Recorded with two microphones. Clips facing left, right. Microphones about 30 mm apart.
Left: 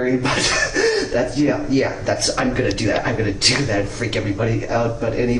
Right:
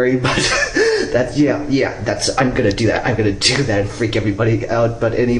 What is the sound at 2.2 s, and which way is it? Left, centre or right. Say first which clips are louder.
Speech: right 6 dB; centre.